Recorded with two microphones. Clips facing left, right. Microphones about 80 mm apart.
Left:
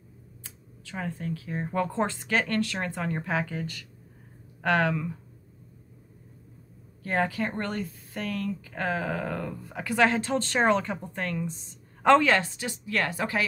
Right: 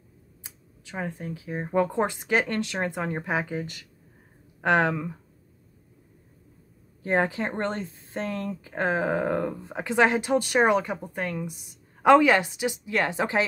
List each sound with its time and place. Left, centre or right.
0.4 s speech: centre
7.0 s speech: right